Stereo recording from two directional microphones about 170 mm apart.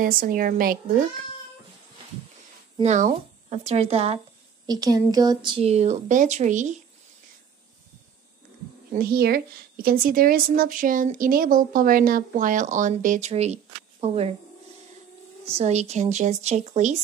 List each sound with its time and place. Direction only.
0.0 s a woman's voice: 55° right (ahead or behind)
2.8 s a woman's voice: 40° right (ahead or behind)
4.6 s a woman's voice: 20° right (ahead or behind); by 6.8 s 45° right (ahead or behind)
8.9 s a woman's voice: 65° right (ahead or behind); by 14.3 s 35° right (ahead or behind)
15.4 s a woman's voice: 40° right (ahead or behind)